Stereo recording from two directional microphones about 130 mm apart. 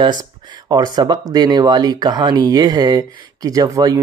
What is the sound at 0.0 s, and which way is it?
Speech, 30° right (ahead or behind).